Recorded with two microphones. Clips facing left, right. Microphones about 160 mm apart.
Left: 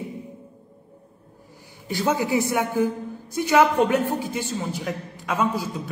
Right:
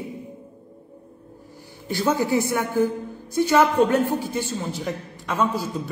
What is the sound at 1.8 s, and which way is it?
A woman's voice, 15° left (ahead or behind).